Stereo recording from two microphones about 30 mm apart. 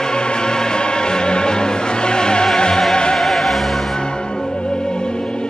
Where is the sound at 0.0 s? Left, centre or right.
Left.